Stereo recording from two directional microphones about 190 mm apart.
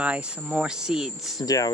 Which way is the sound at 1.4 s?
20° left (ahead or behind).